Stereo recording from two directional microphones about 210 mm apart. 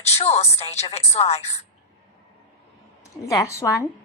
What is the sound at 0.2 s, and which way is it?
A man's voice, 30° left (ahead or behind).